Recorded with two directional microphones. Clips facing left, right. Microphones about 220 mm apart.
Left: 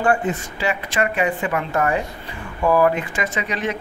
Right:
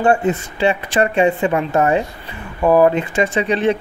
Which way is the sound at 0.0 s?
25° right (ahead or behind).